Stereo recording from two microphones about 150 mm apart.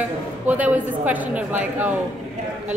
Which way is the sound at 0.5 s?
10° right (ahead or behind).